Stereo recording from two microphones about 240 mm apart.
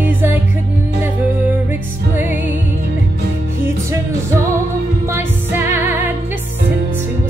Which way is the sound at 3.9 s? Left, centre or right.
Centre.